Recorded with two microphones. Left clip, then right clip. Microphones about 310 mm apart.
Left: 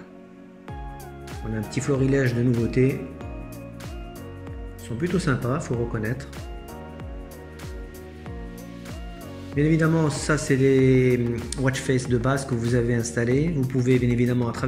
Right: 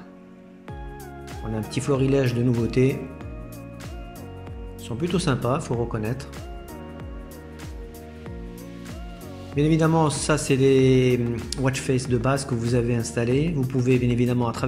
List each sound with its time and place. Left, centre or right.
1.7 s speech: centre
4.8 s speech: centre
9.5 s speech: centre